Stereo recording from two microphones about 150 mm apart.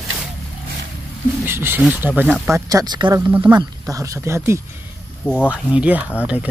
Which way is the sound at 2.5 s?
25° right (ahead or behind).